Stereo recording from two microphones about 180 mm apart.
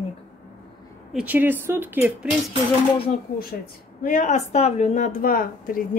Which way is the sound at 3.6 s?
45° left (ahead or behind).